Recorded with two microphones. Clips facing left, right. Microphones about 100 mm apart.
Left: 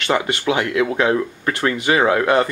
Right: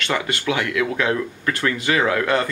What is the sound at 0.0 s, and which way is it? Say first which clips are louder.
Speech: left 4 dB; 20° left (ahead or behind).